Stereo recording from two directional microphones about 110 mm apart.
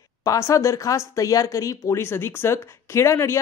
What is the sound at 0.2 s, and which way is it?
Speech, 30° left (ahead or behind).